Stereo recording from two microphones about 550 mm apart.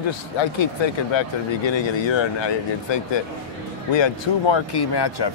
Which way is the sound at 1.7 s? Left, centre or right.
Left.